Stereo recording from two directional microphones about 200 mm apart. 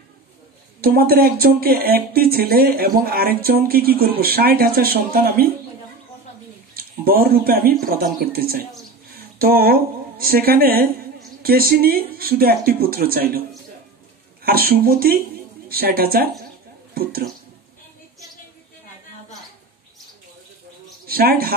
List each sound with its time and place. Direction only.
0.7 s speech: 50° right (ahead or behind)
6.7 s a woman's voice: 45° right (ahead or behind)
14.4 s speech: 50° right (ahead or behind)
21.1 s speech: 50° right (ahead or behind)